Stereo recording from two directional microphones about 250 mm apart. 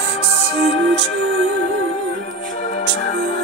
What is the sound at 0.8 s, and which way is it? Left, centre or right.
Music, right.